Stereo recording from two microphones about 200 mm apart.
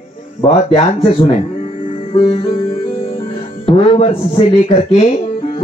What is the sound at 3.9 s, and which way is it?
Speech, 30° left (ahead or behind).